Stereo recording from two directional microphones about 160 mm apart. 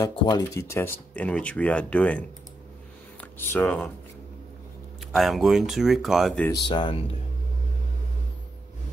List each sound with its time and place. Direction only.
0.0 s speech: 25° left (ahead or behind); by 3.9 s 10° left (ahead or behind)
5.1 s speech: centre (ahead or behind)
6.7 s speech: 30° left (ahead or behind)